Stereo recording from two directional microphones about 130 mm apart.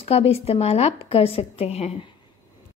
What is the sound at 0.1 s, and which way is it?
Speech, 50° left (ahead or behind).